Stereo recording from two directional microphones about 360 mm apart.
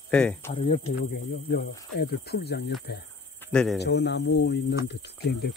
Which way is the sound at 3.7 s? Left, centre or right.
Left.